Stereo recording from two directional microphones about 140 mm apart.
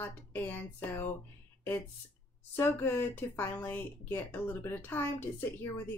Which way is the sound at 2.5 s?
15° left (ahead or behind).